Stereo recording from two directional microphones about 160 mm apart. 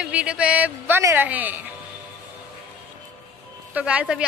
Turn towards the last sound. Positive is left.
turn(degrees=-10)  # may be behind; listen again after turning